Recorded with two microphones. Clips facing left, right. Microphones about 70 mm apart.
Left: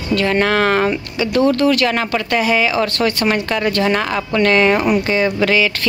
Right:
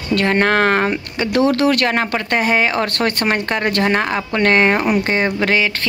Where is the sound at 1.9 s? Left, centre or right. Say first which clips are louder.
Even; right.